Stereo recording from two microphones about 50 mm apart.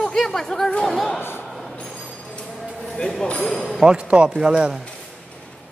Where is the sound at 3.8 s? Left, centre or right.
Right.